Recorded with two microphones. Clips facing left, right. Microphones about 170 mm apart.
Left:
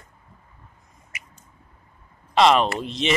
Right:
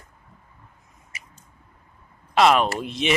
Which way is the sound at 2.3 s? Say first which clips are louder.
Even; 5° right (ahead or behind).